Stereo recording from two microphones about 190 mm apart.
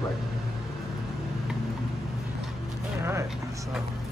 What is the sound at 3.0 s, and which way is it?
Vehicle, 15° right (ahead or behind).